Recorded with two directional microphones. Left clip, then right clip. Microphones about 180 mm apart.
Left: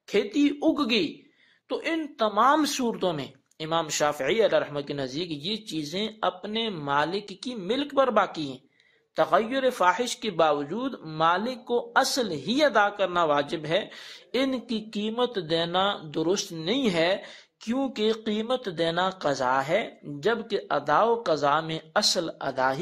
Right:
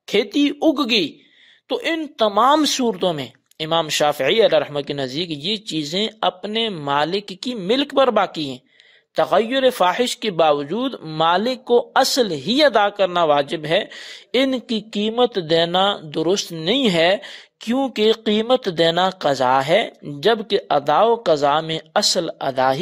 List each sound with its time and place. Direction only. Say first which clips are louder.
0.1 s a woman's voice: right 6 dB; 50° right (ahead or behind)